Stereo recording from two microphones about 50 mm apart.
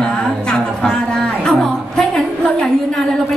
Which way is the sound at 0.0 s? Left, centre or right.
Centre.